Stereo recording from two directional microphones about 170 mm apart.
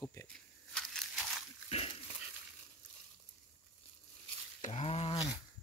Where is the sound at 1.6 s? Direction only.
35° left (ahead or behind).